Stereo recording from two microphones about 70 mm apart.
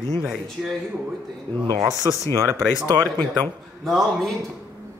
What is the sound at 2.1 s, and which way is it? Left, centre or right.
Speech, right.